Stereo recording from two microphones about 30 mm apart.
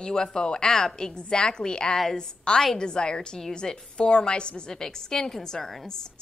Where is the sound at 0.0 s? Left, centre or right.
Left.